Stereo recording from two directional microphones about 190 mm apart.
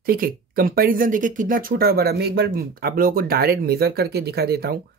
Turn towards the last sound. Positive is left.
turn(degrees=-55)  # may be behind; listen again after turning